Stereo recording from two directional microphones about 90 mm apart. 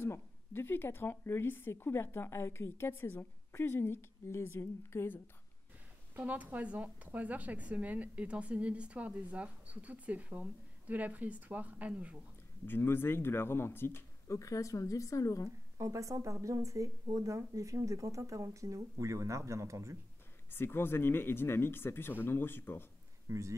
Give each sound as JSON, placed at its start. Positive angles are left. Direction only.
{"t": 0.0, "sound": "a woman's voice", "side_deg": 25}
{"t": 6.1, "sound": "speech", "side_deg": -15}
{"t": 12.6, "sound": "a woman's voice", "side_deg": 25}
{"t": 15.8, "sound": "speech", "side_deg": -35}
{"t": 20.5, "sound": "a woman's voice", "side_deg": 25}
{"t": 23.2, "sound": "speech", "side_deg": -35}